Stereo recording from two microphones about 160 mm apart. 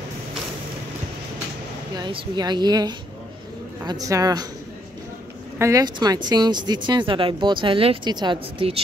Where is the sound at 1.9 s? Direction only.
25° right (ahead or behind).